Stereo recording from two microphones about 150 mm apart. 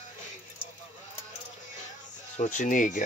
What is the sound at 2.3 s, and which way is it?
Speech, 55° left (ahead or behind).